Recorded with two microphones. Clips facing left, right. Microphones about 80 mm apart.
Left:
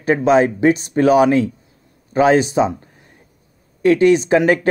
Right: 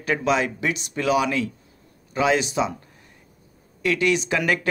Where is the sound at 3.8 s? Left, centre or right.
Left.